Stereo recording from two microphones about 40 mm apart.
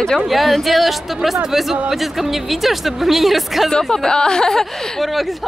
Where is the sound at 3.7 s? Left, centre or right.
Centre.